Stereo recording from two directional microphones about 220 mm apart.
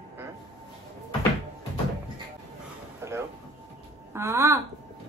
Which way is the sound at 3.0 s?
10° right (ahead or behind).